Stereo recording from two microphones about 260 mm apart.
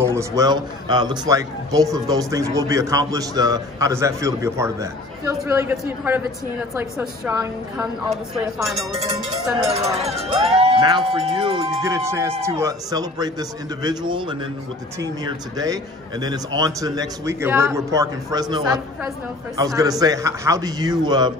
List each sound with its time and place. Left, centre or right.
0.0 s a man's voice: centre
9.9 s a man's voice: right